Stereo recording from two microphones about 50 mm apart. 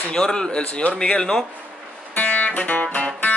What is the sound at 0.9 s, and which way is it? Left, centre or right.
Speech, centre.